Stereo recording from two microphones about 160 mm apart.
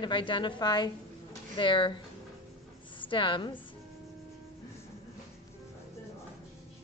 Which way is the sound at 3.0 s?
30° left (ahead or behind).